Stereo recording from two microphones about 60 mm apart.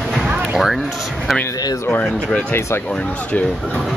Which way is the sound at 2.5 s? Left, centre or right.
Left.